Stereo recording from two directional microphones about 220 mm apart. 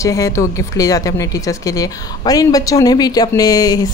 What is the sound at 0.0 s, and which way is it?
Speech, 15° left (ahead or behind).